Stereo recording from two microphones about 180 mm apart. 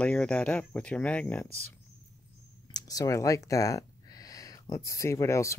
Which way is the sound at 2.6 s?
20° left (ahead or behind).